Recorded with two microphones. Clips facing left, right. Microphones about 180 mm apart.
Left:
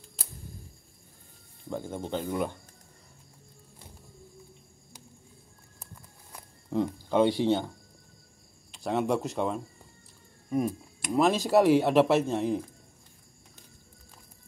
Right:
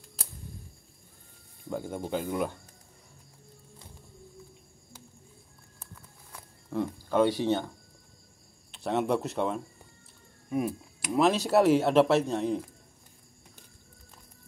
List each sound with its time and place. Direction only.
1.7 s speech: 10° right (ahead or behind)
6.3 s a sound: 15° left (ahead or behind)
8.7 s speech: centre (ahead or behind)
10.5 s insect: 5° right (ahead or behind)
11.1 s speech: centre (ahead or behind)